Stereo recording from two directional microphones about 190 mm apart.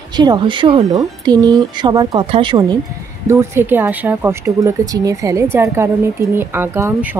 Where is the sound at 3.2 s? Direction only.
10° right (ahead or behind).